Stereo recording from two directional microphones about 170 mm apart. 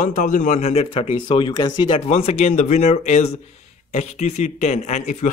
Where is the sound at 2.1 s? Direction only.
40° left (ahead or behind).